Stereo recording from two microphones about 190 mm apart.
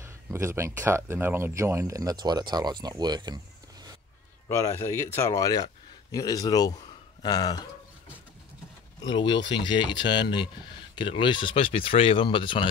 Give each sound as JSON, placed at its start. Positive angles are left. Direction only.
{"t": 0.0, "sound": "speech", "side_deg": -15}
{"t": 4.5, "sound": "speech", "side_deg": 15}
{"t": 9.0, "sound": "speech", "side_deg": 25}